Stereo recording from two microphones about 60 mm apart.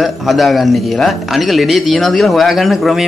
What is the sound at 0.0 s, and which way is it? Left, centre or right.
Speech, centre.